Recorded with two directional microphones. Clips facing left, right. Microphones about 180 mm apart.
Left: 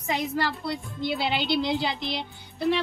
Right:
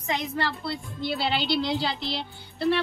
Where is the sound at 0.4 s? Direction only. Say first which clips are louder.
Left 1 dB; 15° left (ahead or behind).